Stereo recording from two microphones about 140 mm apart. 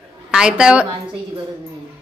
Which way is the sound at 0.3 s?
5° right (ahead or behind).